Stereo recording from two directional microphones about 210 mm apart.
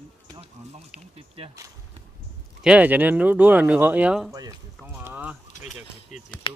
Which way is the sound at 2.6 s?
5° right (ahead or behind).